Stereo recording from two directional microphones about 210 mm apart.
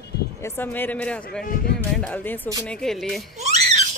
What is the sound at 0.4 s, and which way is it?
A woman's voice, 10° left (ahead or behind).